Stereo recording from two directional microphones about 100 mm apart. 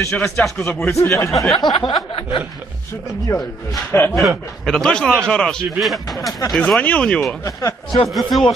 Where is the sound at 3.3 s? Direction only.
30° left (ahead or behind).